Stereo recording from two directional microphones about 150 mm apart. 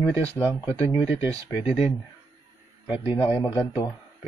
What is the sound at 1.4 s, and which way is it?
Speech, 40° left (ahead or behind).